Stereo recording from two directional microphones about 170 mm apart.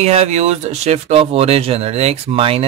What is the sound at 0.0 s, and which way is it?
Speech, 40° right (ahead or behind).